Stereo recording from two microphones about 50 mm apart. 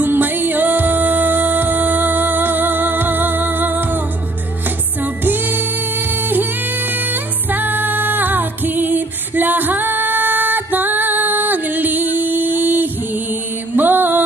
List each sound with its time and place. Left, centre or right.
0.0 s music: right
5.0 s music: right